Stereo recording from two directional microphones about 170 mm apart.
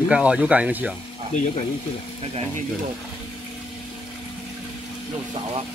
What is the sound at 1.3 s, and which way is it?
Speech, 35° left (ahead or behind).